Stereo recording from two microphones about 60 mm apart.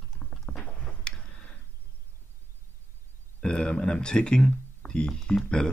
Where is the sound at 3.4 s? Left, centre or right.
Centre.